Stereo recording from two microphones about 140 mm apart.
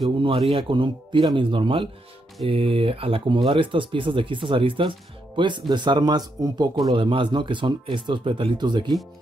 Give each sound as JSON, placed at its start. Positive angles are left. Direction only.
{"t": 0.6, "sound": "speech", "side_deg": -35}